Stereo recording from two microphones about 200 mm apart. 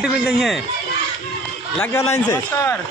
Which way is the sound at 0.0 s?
Centre (ahead or behind).